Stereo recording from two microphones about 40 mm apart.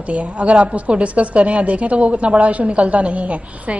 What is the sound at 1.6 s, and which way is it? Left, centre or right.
A woman's voice, right.